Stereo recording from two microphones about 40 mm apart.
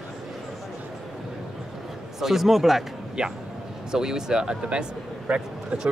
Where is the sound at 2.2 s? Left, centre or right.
Centre.